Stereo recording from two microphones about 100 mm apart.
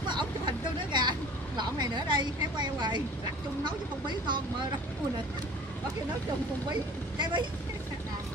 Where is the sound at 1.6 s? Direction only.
45° right (ahead or behind).